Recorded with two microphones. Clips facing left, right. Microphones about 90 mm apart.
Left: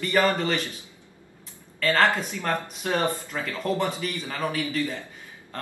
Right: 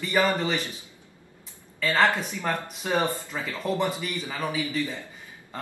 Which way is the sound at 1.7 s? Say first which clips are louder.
Left 1 dB; 5° right (ahead or behind).